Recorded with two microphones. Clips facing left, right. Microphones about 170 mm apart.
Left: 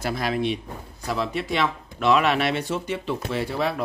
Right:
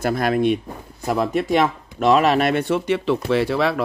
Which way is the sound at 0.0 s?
50° right (ahead or behind).